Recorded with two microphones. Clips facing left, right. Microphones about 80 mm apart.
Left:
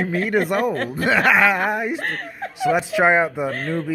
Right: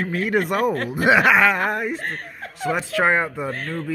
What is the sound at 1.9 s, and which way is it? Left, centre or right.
Speech, left.